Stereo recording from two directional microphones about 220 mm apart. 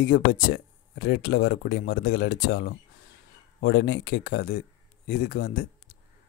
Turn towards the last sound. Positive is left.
turn(degrees=40)  # may be behind; listen again after turning